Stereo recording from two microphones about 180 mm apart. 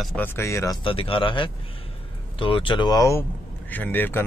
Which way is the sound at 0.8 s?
30° left (ahead or behind).